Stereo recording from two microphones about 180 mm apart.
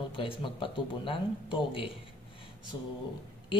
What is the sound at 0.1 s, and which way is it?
Speech, 25° left (ahead or behind).